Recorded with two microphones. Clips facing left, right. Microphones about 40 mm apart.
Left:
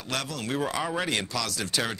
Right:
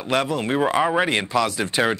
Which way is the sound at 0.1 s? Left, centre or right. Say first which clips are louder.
Right 9 dB; right.